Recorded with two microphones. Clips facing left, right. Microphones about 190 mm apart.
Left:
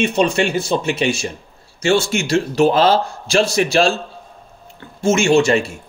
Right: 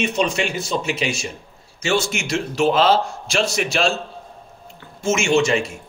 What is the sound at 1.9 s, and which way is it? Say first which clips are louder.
A man's voice: left 5 dB; 30° left (ahead or behind).